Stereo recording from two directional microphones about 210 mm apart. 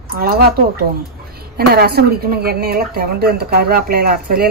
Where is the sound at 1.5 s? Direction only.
50° right (ahead or behind).